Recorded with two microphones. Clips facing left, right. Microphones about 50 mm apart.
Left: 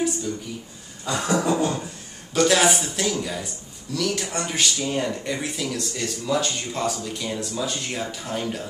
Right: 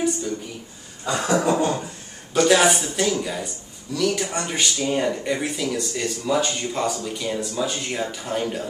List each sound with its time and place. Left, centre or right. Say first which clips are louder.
1.2 s speech: right 2 dB; centre
2.3 s speech: right 2 dB; centre